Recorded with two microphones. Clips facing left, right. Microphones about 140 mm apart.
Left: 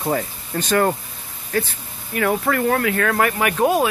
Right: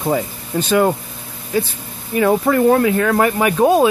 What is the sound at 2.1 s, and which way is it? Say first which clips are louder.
Speech: right 5 dB; 20° right (ahead or behind).